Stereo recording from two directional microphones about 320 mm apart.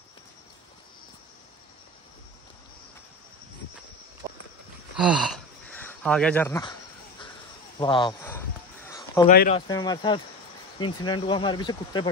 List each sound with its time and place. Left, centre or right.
4.2 s walk: centre
4.9 s a sound: centre
5.8 s crow: centre
7.8 s speech: centre
8.8 s a sound: centre
9.3 s speech: left
9.7 s speech: centre